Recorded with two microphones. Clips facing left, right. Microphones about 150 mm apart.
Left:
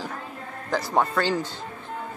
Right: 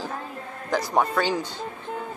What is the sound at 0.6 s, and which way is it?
Speech, 15° right (ahead or behind).